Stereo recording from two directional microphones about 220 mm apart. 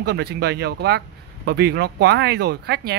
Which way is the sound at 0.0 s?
50° right (ahead or behind).